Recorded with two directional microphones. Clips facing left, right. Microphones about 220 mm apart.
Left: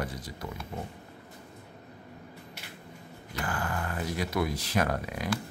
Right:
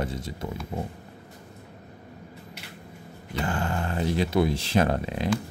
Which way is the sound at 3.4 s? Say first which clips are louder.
Right 5 dB; 25° right (ahead or behind).